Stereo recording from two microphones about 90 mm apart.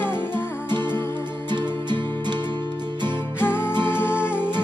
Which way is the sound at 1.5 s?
55° right (ahead or behind).